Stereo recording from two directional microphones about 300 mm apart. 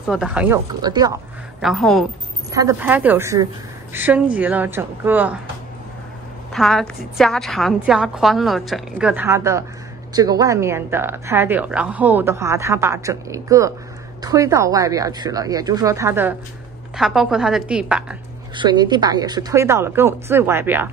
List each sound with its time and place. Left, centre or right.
0.0 s speech: centre
1.6 s a woman's voice: centre
6.5 s a woman's voice: centre
18.6 s speech: centre